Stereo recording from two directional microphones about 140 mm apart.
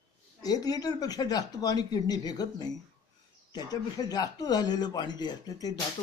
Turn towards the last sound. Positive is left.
turn(degrees=30)  # may be behind; listen again after turning